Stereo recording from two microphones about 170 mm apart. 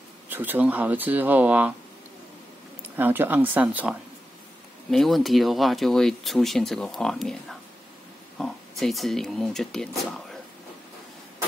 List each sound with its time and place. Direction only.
0.3 s speech: 10° right (ahead or behind)
3.0 s speech: 10° right (ahead or behind)